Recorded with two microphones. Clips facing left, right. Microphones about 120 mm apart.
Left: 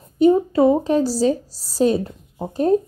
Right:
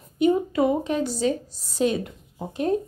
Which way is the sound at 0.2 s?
35° left (ahead or behind).